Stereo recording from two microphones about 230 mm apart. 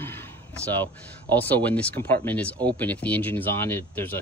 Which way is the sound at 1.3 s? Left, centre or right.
Centre.